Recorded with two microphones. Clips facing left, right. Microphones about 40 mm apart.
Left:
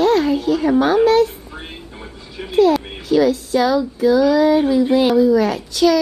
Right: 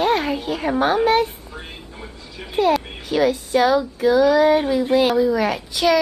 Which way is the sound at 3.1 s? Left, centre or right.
Centre.